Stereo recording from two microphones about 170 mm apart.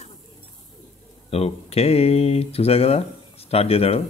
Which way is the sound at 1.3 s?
35° left (ahead or behind).